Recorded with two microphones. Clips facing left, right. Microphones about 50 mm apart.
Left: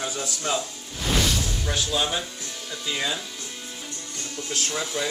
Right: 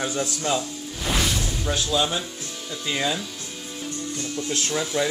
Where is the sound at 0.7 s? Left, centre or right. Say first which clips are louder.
Even; centre.